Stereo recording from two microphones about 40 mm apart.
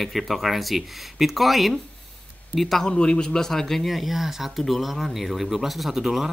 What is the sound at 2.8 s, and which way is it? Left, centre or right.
Speech, left.